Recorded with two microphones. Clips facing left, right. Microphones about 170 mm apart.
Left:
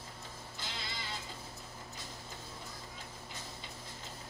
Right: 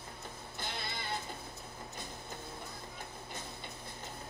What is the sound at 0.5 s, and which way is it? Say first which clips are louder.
Music: right 3 dB; 60° right (ahead or behind).